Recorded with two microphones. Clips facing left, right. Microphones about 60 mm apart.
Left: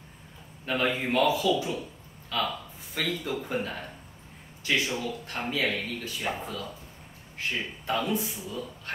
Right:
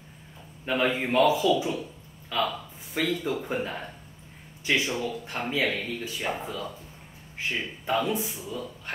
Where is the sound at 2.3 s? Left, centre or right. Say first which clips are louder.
Right 2 dB; centre.